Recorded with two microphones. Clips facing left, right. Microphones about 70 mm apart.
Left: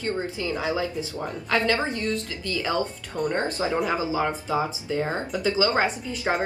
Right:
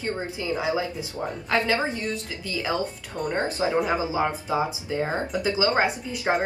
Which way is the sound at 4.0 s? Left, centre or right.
Right.